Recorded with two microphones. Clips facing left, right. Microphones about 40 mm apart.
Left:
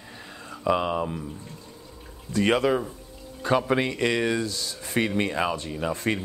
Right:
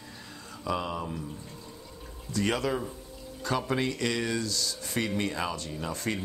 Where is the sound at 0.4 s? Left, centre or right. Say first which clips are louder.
Left 8 dB; left.